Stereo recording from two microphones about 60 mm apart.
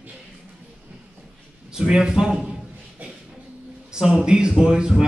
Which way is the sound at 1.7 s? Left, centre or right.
Centre.